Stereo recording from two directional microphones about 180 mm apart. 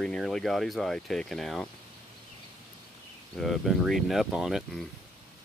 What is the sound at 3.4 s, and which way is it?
Speech, centre (ahead or behind).